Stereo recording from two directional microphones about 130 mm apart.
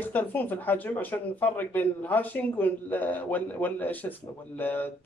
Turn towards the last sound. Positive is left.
turn(degrees=15)  # may be behind; listen again after turning